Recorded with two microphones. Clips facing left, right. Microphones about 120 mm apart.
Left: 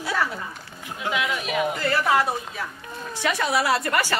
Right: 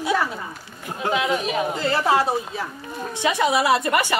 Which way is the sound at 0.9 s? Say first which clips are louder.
Right 4 dB; 35° right (ahead or behind).